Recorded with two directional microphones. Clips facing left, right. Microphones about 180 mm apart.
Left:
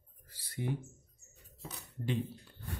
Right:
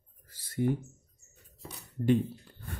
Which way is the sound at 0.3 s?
45° right (ahead or behind).